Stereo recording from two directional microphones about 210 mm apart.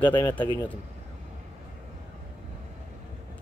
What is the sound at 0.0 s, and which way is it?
Speech, 20° left (ahead or behind).